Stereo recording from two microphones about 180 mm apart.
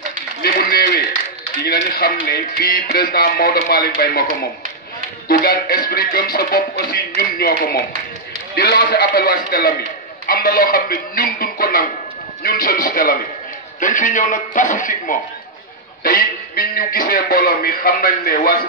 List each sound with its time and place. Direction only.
0.4 s a sound: 55° left (ahead or behind)
1.6 s speech: 55° left (ahead or behind)
5.3 s a woman's voice: 55° left (ahead or behind)